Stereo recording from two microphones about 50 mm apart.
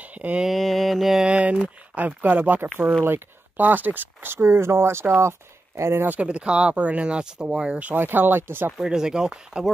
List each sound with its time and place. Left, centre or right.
0.0 s a sound: right
0.5 s mantra: centre
1.2 s speech: right
2.0 s speech: right
6.2 s speech: right
7.9 s speech: right
8.8 s speech: centre